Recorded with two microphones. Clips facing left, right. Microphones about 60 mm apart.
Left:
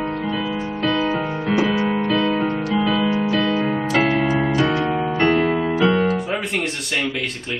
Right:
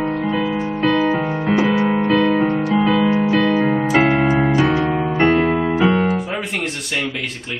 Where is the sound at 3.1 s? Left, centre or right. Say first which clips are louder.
Right 3 dB; centre.